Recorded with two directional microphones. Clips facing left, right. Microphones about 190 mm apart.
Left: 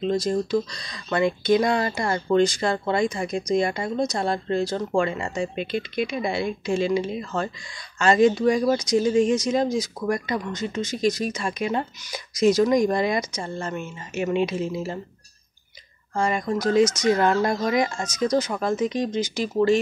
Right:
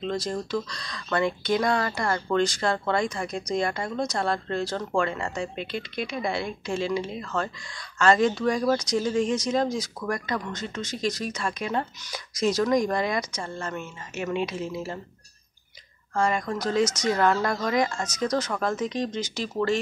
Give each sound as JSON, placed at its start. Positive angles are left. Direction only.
{"t": 0.0, "sound": "speech", "side_deg": 15}
{"t": 16.2, "sound": "speech", "side_deg": 20}